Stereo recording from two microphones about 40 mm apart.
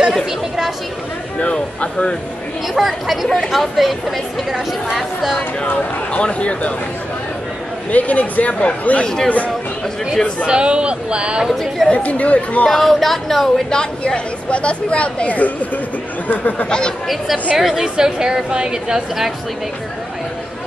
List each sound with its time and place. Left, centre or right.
0.1 s speech: centre
1.4 s speech: left
2.7 s speech: centre
5.7 s speech: left
7.9 s speech: left
9.0 s speech: centre
10.4 s a woman's voice: right
11.9 s speech: left
12.6 s speech: centre
13.7 s speech: left
16.6 s speech: left
17.6 s a woman's voice: centre
17.8 s a woman's voice: centre